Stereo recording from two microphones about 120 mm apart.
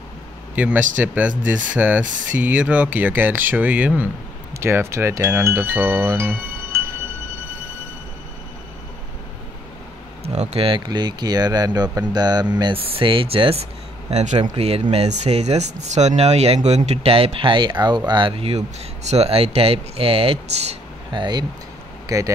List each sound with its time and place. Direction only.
0.6 s speech: 15° right (ahead or behind)
10.2 s speech: 65° right (ahead or behind)
10.9 s speech: 35° right (ahead or behind)
12.8 s speech: 50° right (ahead or behind)
14.1 s speech: 75° right (ahead or behind)
14.6 s speech: 55° right (ahead or behind)
21.1 s speech: 40° right (ahead or behind)
22.0 s vehicle: 30° right (ahead or behind)